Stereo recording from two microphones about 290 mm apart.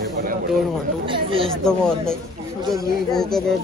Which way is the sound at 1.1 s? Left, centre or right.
Centre.